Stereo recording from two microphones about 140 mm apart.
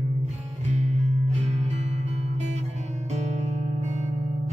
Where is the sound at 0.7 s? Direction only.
55° right (ahead or behind).